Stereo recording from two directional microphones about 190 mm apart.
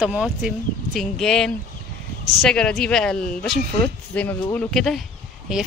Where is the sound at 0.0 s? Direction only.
5° right (ahead or behind).